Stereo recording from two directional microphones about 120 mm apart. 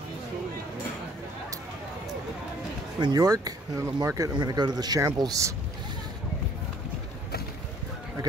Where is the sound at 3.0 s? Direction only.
35° right (ahead or behind).